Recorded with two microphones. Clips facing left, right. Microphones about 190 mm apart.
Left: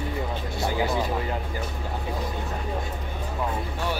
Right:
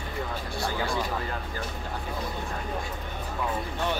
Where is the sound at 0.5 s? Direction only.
20° left (ahead or behind).